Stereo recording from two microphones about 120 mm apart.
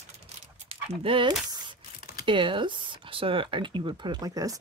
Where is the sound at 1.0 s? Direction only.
45° right (ahead or behind); by 4.5 s 30° right (ahead or behind).